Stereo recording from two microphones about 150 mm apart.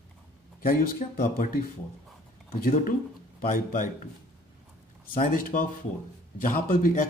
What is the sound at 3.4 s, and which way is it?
Speech, 65° left (ahead or behind).